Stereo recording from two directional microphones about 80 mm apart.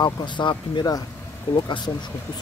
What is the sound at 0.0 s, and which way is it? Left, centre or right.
Speech, left.